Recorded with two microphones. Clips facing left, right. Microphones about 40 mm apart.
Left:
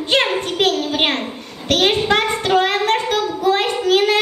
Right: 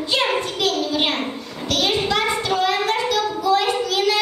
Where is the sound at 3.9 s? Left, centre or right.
Left.